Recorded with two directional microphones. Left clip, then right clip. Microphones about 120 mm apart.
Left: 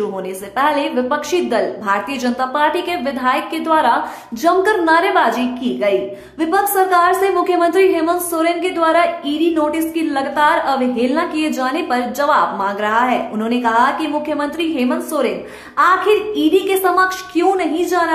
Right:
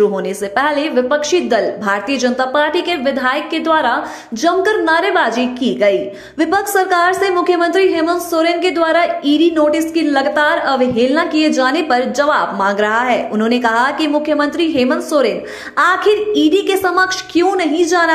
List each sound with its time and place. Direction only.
0.6 s a woman's voice: 30° right (ahead or behind); by 4.9 s 15° right (ahead or behind)
4.9 s a woman's voice: 30° right (ahead or behind)